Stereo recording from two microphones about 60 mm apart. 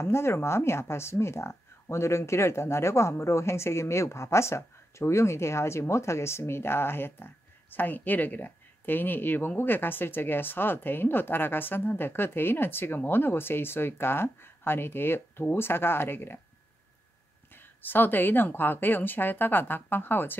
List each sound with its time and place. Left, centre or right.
0.0 s speech: left
17.6 s speech: left